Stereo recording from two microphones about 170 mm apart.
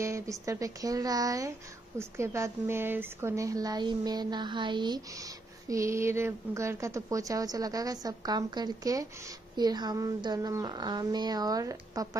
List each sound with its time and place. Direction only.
0.0 s a woman's voice: 20° right (ahead or behind)